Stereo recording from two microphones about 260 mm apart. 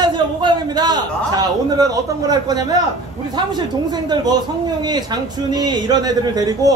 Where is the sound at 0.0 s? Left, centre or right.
Centre.